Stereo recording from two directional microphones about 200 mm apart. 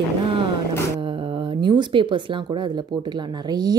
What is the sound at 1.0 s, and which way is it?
Speech, 25° right (ahead or behind).